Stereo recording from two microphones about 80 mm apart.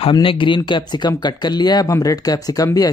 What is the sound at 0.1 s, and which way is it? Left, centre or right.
Speech, left.